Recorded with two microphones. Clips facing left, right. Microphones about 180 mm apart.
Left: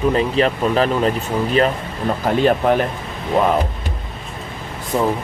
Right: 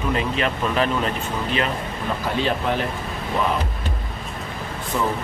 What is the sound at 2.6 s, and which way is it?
Speech, 55° left (ahead or behind).